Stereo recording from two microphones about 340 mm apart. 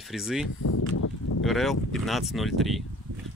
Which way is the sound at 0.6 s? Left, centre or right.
Left.